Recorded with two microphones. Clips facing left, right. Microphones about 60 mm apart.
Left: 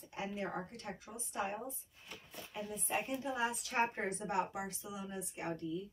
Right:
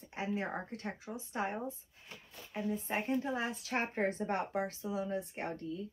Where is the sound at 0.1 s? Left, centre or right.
Right.